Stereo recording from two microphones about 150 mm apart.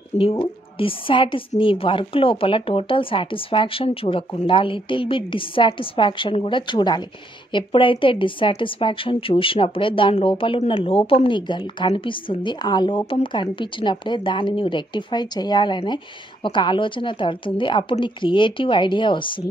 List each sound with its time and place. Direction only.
0.4 s speech: 35° left (ahead or behind)